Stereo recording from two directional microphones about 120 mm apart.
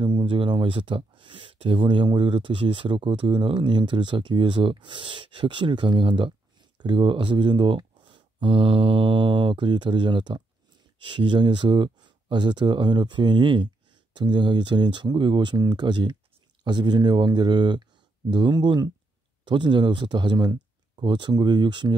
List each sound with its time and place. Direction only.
0.0 s speech: 45° right (ahead or behind)